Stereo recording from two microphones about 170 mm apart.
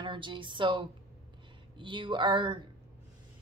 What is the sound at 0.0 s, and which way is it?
A woman's voice, 30° right (ahead or behind).